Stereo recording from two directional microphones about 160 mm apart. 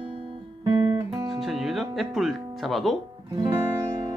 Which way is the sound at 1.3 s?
Centre (ahead or behind).